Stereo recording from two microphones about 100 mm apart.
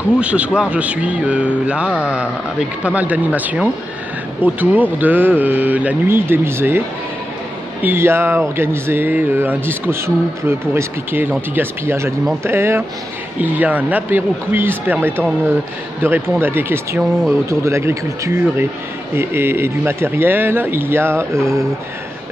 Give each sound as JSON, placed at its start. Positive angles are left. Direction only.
{"t": 0.2, "sound": "a man's voice", "side_deg": -10}
{"t": 7.8, "sound": "speech", "side_deg": -25}